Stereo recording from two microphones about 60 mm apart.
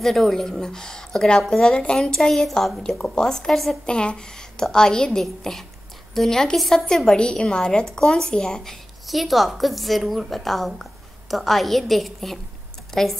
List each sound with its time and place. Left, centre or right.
0.0 s a woman's voice: centre
3.8 s a woman's voice: centre